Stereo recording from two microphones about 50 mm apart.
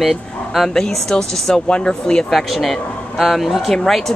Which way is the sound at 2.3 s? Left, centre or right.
Centre.